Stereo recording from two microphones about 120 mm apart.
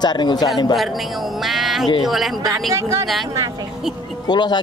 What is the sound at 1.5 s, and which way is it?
Speech, centre (ahead or behind).